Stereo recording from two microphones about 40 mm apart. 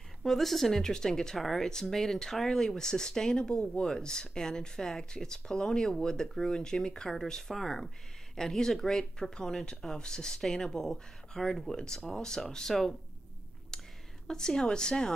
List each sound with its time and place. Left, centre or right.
0.2 s speech: centre
13.7 s whispering: centre
14.2 s speech: centre